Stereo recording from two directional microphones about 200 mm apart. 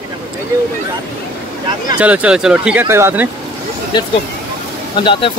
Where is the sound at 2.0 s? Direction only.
5° right (ahead or behind).